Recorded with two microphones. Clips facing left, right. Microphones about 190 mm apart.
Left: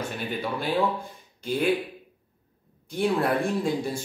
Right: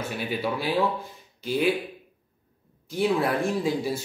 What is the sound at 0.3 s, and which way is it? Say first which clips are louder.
Speech: right 3 dB; 5° right (ahead or behind).